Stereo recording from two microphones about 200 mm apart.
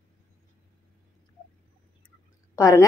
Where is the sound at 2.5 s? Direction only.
15° left (ahead or behind).